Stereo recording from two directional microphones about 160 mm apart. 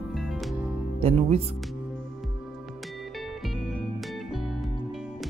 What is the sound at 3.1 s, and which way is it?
Music, centre (ahead or behind).